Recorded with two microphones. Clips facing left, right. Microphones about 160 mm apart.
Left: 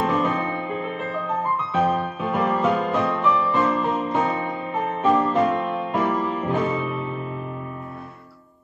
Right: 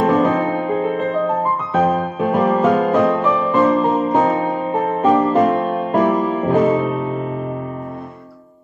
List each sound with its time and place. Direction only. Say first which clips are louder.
0.0 s music: right 7 dB; 45° right (ahead or behind)